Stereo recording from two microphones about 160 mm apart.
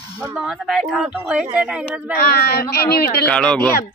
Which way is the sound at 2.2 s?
75° left (ahead or behind).